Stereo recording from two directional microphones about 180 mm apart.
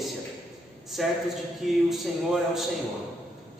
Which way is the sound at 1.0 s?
Centre (ahead or behind).